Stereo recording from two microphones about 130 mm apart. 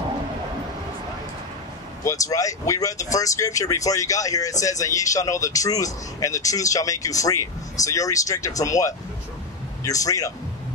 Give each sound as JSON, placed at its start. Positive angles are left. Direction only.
{"t": 2.0, "sound": "speech", "side_deg": 25}